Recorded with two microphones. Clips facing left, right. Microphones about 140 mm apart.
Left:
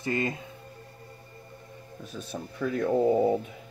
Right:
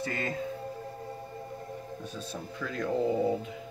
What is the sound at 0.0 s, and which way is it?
Speech, 15° left (ahead or behind).